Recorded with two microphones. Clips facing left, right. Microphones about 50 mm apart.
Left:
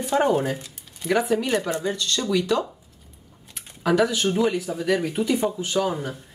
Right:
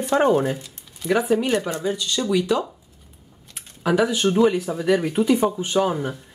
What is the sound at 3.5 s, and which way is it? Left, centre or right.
Typing, centre.